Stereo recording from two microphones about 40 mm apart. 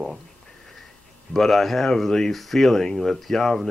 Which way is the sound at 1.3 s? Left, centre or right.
Centre.